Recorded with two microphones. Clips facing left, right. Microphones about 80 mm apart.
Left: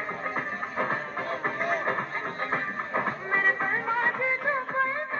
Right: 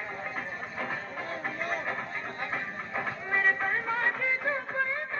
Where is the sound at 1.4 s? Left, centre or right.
Left.